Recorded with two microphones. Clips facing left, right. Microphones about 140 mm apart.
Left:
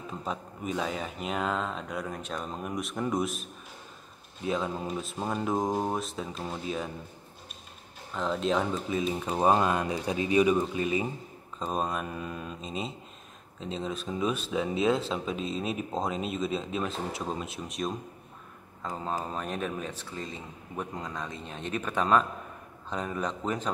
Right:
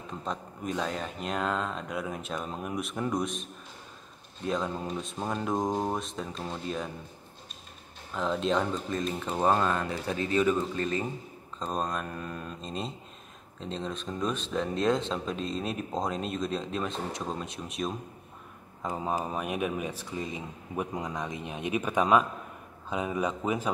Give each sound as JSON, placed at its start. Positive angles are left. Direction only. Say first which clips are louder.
{"t": 0.2, "sound": "speech", "louder": "right 1 dB", "side_deg": 5}
{"t": 8.1, "sound": "speech", "louder": "even", "side_deg": 0}
{"t": 18.8, "sound": "a man's voice", "louder": "right 2 dB", "side_deg": -15}